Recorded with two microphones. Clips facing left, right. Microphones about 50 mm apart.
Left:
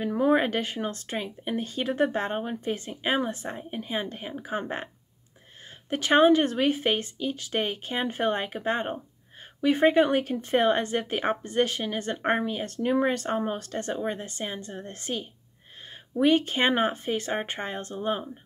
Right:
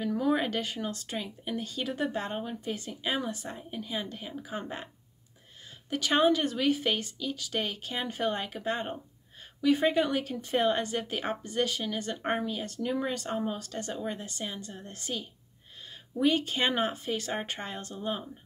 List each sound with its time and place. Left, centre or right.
0.0 s speech: left
5.9 s speech: left